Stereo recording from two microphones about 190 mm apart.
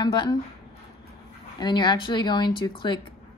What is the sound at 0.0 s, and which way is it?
Speech, 25° left (ahead or behind).